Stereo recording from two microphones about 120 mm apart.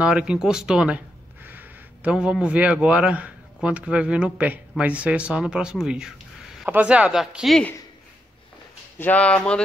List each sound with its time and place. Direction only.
0.0 s speech: 10° right (ahead or behind)
8.9 s speech: 15° left (ahead or behind)